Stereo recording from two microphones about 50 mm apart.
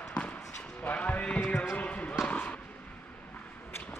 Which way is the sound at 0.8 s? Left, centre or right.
Left.